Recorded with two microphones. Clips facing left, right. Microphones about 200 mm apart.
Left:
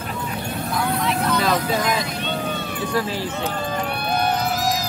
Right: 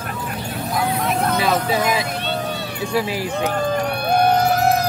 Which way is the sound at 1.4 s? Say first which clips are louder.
Right 2 dB; 5° right (ahead or behind).